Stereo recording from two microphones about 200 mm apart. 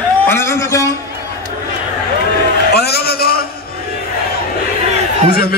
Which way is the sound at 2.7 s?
50° left (ahead or behind).